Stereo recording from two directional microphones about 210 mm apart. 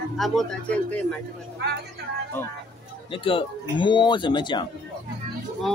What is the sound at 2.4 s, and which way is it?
Speech, 10° left (ahead or behind).